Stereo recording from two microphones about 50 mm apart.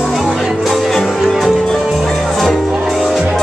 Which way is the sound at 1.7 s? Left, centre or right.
Centre.